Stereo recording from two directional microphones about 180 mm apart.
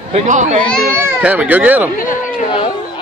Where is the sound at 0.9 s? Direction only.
10° right (ahead or behind).